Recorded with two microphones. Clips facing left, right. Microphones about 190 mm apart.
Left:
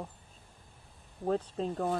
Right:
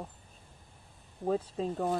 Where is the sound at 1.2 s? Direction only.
5° right (ahead or behind).